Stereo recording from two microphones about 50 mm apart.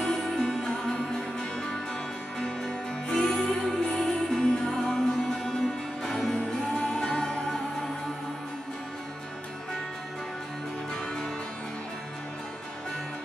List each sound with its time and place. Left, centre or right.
0.0 s music: centre
2.3 s music: centre
6.3 s music: centre